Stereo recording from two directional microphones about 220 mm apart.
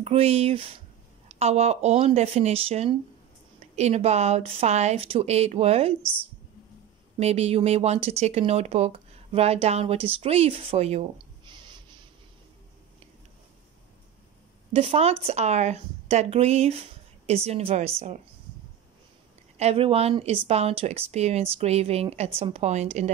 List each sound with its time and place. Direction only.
0.0 s speech: 30° right (ahead or behind)
7.2 s speech: 30° right (ahead or behind)
14.7 s speech: 25° right (ahead or behind)
19.5 s a woman's voice: 30° right (ahead or behind)